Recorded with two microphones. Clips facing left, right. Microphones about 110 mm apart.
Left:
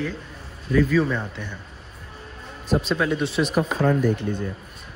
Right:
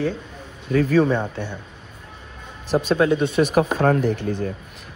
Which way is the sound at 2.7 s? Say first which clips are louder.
Right 4 dB; 30° right (ahead or behind).